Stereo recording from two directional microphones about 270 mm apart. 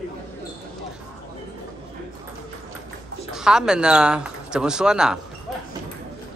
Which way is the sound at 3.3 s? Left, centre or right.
Centre.